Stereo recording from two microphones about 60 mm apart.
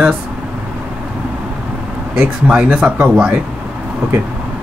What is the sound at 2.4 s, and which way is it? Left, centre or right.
Speech, centre.